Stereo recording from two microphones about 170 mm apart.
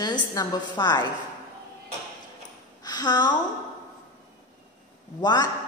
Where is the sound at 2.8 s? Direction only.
25° left (ahead or behind).